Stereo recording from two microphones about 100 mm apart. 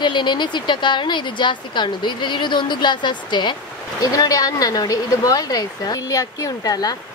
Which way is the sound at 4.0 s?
35° left (ahead or behind).